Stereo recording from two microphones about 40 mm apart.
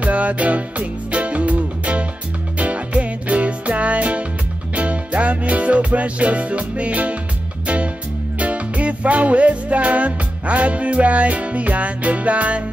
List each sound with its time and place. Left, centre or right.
0.0 s music: right